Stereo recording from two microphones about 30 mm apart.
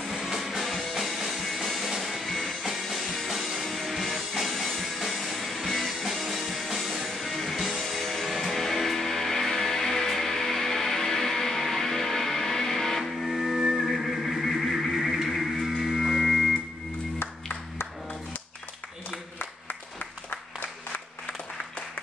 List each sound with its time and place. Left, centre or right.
0.4 s music: centre
20.0 s applause: left